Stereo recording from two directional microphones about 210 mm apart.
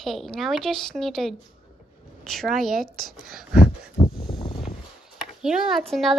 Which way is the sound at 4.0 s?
25° left (ahead or behind).